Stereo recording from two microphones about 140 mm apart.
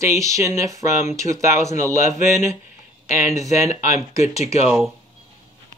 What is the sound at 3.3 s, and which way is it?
Speech, 25° right (ahead or behind).